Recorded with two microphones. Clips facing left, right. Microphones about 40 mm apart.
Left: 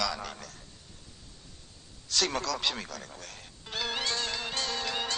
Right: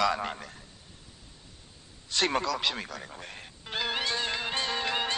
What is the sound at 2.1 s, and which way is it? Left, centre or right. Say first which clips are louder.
Speech: right 3 dB; right.